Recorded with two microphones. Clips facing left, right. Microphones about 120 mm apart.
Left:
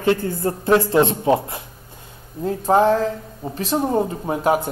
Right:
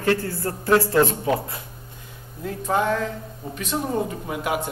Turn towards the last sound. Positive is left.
turn(degrees=35)  # may be behind; listen again after turning